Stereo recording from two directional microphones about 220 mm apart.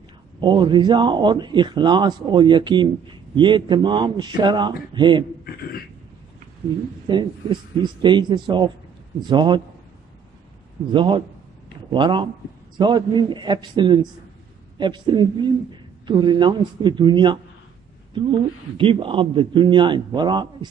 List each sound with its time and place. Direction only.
0.4 s a man's voice: 20° right (ahead or behind)
5.4 s speech: 45° left (ahead or behind)
7.1 s a man's voice: 20° right (ahead or behind)
10.9 s a man's voice: 20° right (ahead or behind)